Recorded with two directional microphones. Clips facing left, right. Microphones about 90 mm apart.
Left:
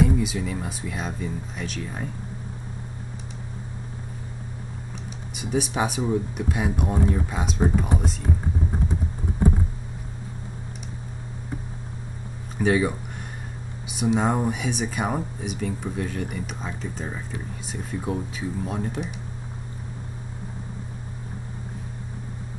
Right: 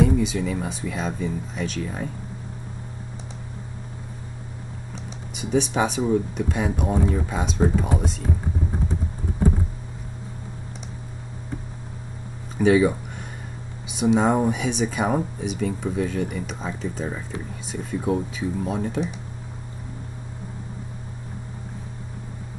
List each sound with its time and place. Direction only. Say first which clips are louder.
0.0 s speech: right 2 dB; 5° left (ahead or behind)
5.3 s speech: right 3 dB; 5° left (ahead or behind)
12.5 s speech: right 4 dB; centre (ahead or behind)